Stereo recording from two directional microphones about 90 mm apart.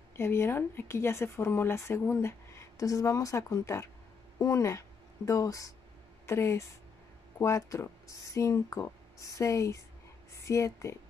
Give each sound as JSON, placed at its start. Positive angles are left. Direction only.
{"t": 0.1, "sound": "a woman's voice", "side_deg": 30}